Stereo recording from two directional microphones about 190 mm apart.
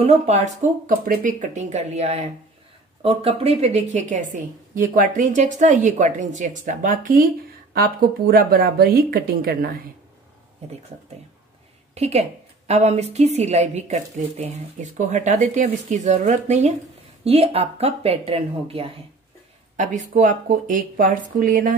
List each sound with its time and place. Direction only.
0.0 s a woman's voice: 35° right (ahead or behind); by 9.8 s 55° right (ahead or behind)
11.9 s a woman's voice: 35° right (ahead or behind)